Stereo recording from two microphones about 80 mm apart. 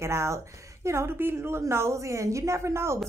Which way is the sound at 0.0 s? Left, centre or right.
Right.